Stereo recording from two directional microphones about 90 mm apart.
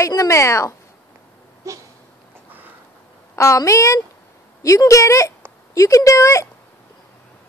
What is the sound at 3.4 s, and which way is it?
A woman's voice, 35° left (ahead or behind).